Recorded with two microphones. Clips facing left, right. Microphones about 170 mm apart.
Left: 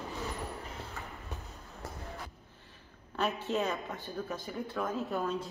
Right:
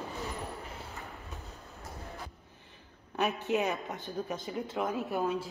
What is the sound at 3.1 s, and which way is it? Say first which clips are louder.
Speech: right 2 dB; 15° right (ahead or behind).